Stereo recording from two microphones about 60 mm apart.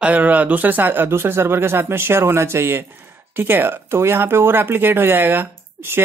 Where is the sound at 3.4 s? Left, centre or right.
Right.